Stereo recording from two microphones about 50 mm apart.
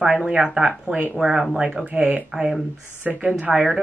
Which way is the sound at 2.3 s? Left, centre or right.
Centre.